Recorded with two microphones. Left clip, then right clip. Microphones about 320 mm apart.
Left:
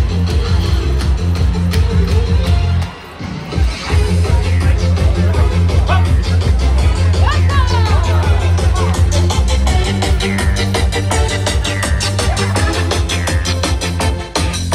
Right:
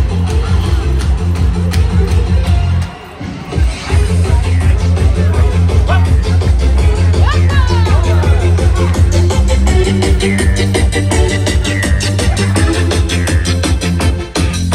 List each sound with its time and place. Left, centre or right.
9.1 s music: centre